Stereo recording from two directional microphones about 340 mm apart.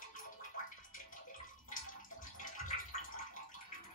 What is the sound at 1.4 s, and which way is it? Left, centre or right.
Bathtub, left.